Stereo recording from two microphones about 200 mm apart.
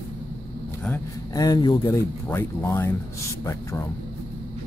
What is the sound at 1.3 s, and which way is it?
Speech, 20° left (ahead or behind).